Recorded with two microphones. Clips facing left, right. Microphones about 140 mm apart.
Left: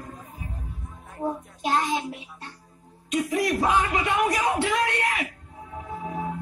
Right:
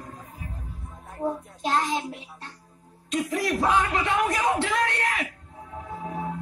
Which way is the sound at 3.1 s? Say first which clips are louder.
Left 2 dB; 15° left (ahead or behind).